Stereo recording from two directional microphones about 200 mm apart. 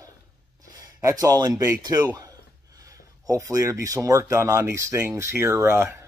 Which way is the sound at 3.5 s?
15° right (ahead or behind).